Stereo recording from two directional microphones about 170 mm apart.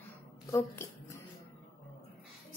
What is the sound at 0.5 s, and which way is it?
Speech, 15° left (ahead or behind).